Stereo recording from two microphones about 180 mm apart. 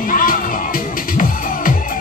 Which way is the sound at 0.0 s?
50° left (ahead or behind).